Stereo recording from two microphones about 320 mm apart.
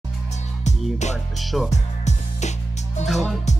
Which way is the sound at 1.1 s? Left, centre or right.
Centre.